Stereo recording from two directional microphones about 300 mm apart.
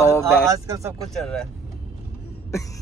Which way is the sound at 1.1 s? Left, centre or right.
Centre.